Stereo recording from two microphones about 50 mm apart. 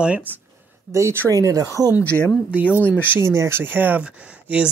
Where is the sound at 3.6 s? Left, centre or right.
Right.